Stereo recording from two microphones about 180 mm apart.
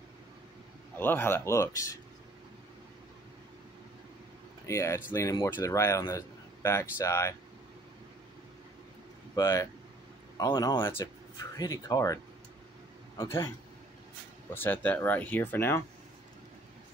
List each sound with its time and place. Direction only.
0.9 s speech: 10° left (ahead or behind)
4.6 s speech: 15° left (ahead or behind)
9.3 s speech: 15° left (ahead or behind)
13.2 s speech: 15° left (ahead or behind)
14.5 s speech: 10° left (ahead or behind)